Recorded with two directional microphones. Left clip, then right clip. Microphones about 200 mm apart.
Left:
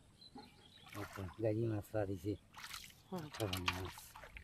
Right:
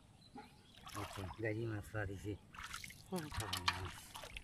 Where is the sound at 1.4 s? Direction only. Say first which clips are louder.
Left 5 dB; 15° left (ahead or behind).